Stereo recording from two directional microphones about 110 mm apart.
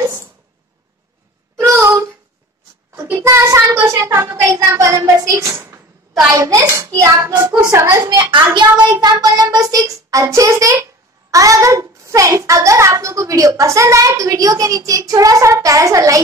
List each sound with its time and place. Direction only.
0.0 s a sound: 20° right (ahead or behind)
1.6 s child singing: 25° right (ahead or behind)
3.0 s a child's voice: 20° right (ahead or behind)
8.3 s child singing: 40° right (ahead or behind)
10.1 s a child's voice: 30° right (ahead or behind)